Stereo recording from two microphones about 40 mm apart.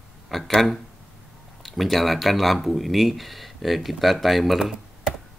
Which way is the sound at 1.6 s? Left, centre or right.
Centre.